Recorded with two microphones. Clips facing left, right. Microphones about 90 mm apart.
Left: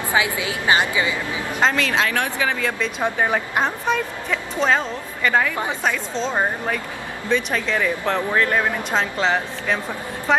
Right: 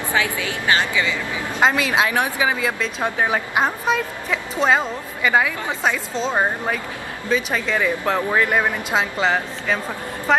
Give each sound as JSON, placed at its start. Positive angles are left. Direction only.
{"t": 0.1, "sound": "a woman's voice", "side_deg": 20}
{"t": 1.6, "sound": "speech", "side_deg": -10}
{"t": 2.8, "sound": "a woman's voice", "side_deg": 0}